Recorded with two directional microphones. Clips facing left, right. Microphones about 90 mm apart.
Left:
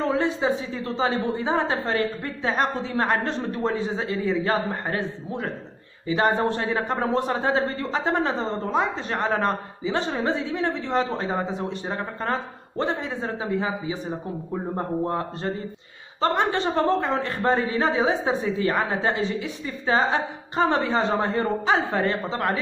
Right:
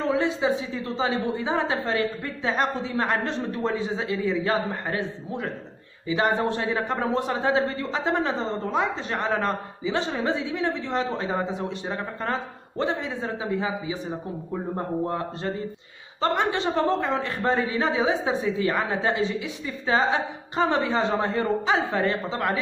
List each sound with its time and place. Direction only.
0.4 s a woman's voice: 35° left (ahead or behind)
12.3 s a woman's voice: 35° left (ahead or behind)
16.2 s a woman's voice: 40° left (ahead or behind)